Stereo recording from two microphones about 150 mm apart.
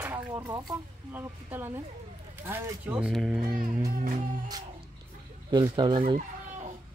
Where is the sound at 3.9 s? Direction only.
60° right (ahead or behind).